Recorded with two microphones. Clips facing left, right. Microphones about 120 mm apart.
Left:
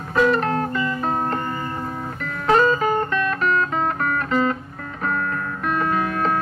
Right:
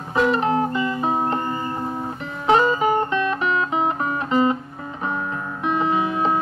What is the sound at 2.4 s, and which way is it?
Music, 15° right (ahead or behind).